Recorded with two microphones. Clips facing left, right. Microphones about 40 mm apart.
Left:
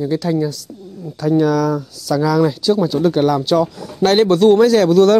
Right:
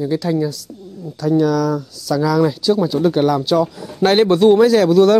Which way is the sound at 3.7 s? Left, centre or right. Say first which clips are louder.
Even; centre.